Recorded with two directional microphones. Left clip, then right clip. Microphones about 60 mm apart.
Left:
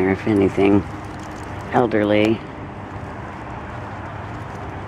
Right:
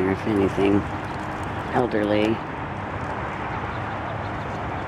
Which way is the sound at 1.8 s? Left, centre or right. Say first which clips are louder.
Left 5 dB; left.